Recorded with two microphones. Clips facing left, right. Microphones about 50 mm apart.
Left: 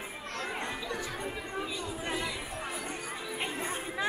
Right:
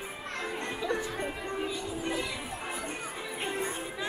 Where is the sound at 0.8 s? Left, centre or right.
Right.